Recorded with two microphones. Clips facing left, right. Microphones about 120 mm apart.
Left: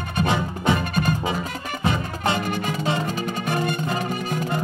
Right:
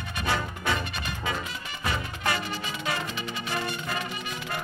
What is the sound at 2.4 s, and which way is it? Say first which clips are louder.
Music: left 8 dB; 50° left (ahead or behind).